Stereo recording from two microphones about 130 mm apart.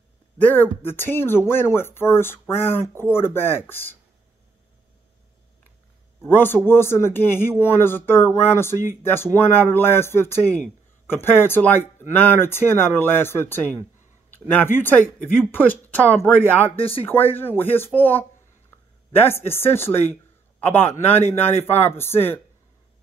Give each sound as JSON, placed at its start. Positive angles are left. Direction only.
{"t": 0.8, "sound": "speech", "side_deg": 15}
{"t": 6.2, "sound": "speech", "side_deg": 15}